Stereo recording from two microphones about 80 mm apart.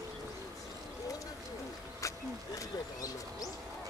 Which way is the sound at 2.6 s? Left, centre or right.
Left.